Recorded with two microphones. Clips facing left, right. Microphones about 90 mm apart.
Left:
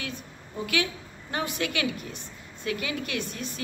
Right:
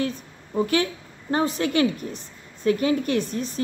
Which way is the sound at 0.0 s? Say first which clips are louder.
Right 10 dB; 35° right (ahead or behind).